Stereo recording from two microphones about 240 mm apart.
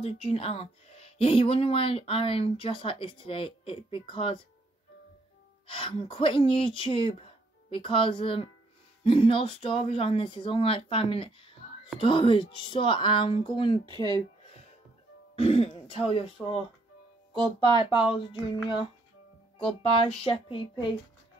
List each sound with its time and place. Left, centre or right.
0.0 s speech: left
5.7 s speech: left
13.8 s speech: centre
15.3 s speech: left
17.7 s speech: centre
19.6 s speech: left